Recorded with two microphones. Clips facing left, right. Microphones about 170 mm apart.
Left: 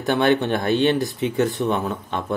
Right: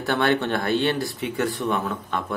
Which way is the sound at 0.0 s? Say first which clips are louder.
Left 3 dB; 20° left (ahead or behind).